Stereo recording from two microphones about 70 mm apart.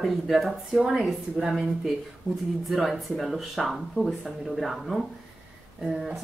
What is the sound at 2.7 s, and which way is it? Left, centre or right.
A woman's voice, centre.